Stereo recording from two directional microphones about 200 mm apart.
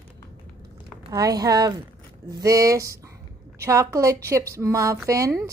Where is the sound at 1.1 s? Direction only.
20° right (ahead or behind).